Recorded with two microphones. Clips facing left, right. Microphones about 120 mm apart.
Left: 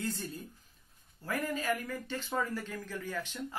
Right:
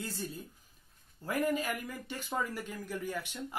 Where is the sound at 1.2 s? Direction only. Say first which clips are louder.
Right 3 dB; 15° right (ahead or behind).